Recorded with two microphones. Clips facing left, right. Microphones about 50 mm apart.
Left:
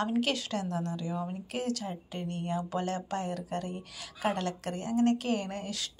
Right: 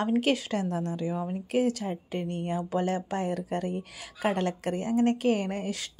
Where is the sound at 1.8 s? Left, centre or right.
Right.